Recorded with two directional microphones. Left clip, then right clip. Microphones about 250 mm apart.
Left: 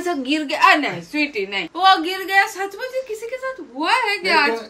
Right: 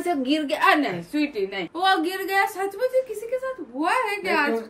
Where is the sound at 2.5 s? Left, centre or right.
Centre.